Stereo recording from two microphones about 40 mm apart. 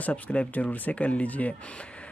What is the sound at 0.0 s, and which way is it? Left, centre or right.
Speech, left.